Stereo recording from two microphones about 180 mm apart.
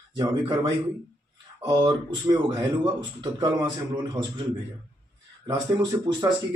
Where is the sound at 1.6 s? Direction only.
25° right (ahead or behind).